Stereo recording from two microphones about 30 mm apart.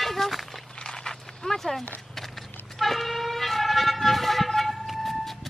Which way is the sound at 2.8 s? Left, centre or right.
Centre.